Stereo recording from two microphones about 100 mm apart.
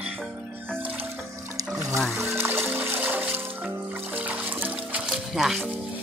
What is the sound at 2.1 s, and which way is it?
Music, 25° right (ahead or behind).